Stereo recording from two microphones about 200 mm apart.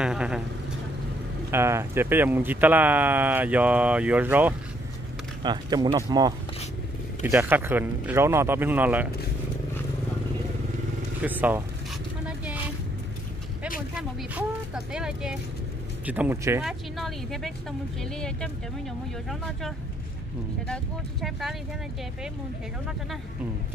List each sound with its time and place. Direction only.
0.0 s a woman's voice: 5° right (ahead or behind)
1.5 s speech: 15° right (ahead or behind)
5.4 s speech: 20° right (ahead or behind)
11.2 s speech: 10° right (ahead or behind)
13.9 s a woman's voice: 5° right (ahead or behind)
16.6 s a woman's voice: centre (ahead or behind)